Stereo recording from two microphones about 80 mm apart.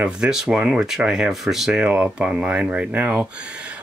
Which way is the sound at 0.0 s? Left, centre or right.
Centre.